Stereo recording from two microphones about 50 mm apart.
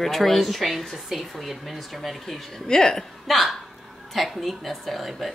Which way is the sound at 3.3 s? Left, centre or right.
Centre.